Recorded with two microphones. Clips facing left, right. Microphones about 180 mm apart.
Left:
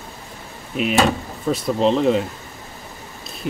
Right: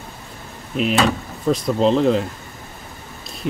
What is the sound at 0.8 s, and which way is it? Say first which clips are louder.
Speech: even; 5° left (ahead or behind).